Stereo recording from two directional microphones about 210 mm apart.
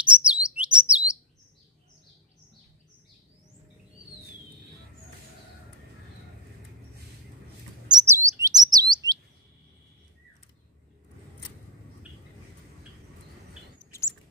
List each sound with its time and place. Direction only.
0.0 s chirp: 5° right (ahead or behind)
8.1 s chirp: 15° right (ahead or behind)
13.9 s bird: 10° left (ahead or behind)